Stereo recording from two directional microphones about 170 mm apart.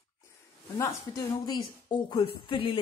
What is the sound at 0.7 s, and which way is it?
A woman's voice, 20° left (ahead or behind).